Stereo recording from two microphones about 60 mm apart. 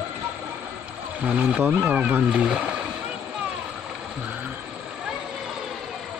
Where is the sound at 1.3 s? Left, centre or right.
Right.